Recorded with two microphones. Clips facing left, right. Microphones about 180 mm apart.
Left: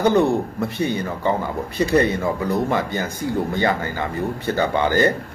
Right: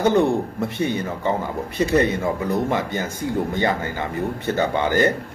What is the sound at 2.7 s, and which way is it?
A man's voice, 25° right (ahead or behind).